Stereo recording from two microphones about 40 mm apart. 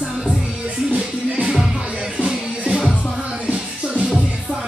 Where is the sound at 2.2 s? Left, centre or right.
Centre.